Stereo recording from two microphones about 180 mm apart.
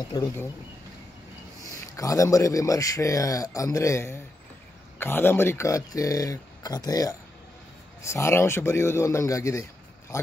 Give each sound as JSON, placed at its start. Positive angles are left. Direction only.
{"t": 0.1, "sound": "speech", "side_deg": 20}
{"t": 2.0, "sound": "a man's voice", "side_deg": 20}